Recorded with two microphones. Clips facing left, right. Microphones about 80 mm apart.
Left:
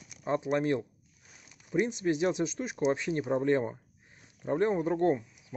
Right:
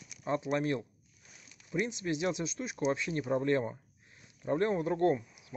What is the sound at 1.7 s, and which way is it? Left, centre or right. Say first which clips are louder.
Speech: left 5 dB; left.